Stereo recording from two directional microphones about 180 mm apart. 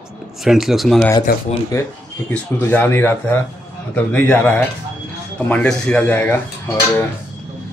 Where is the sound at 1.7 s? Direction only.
15° left (ahead or behind).